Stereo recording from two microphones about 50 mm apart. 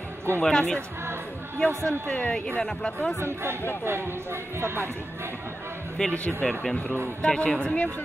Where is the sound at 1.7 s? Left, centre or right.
Right.